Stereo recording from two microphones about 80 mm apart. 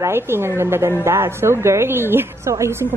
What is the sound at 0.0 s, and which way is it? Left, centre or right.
A woman's voice, right.